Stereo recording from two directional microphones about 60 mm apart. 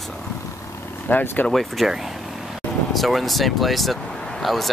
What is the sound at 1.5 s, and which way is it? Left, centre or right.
Speech, centre.